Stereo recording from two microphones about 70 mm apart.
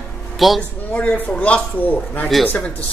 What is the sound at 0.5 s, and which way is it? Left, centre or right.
Speech, centre.